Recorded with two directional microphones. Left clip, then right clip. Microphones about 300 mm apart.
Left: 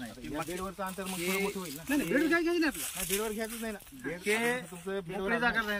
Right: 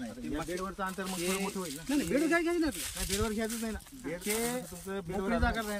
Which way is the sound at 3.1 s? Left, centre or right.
Left.